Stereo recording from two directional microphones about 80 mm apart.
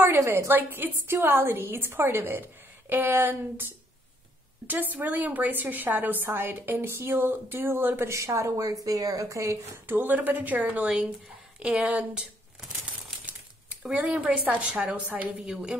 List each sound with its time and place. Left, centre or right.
0.2 s a woman's voice: right
9.9 s a woman's voice: right
13.8 s a woman's voice: centre